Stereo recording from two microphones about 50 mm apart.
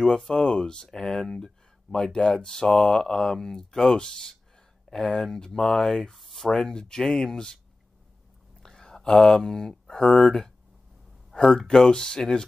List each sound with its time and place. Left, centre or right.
0.0 s speech: centre
8.6 s speech: centre
11.3 s speech: centre